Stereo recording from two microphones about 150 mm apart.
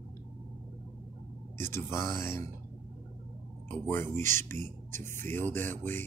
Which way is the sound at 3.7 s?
15° left (ahead or behind).